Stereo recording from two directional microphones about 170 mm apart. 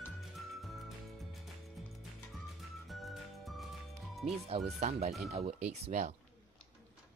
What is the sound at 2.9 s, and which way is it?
Music, centre (ahead or behind).